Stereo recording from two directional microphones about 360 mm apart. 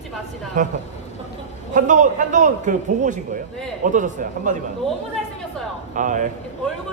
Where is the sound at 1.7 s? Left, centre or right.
Right.